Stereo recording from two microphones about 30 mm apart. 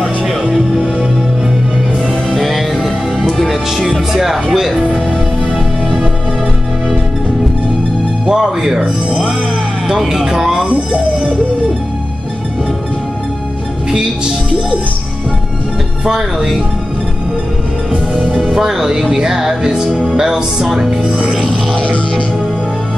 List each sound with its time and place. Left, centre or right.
2.3 s music: centre
4.1 s speech: centre
8.3 s speech: right
16.2 s speech: centre
18.4 s speech: centre
19.9 s speech: centre
20.2 s speech: right
20.6 s speech: centre